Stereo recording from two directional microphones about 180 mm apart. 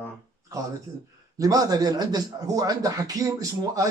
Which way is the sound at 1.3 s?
20° right (ahead or behind).